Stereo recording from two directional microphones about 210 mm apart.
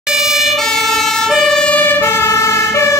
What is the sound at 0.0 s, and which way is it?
Emergency vehicle, 5° right (ahead or behind).